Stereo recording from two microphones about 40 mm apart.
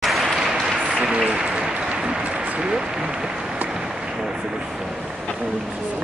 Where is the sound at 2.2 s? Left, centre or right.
Right.